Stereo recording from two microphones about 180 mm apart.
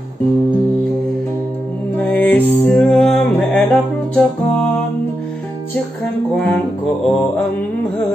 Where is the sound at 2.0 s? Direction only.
10° left (ahead or behind).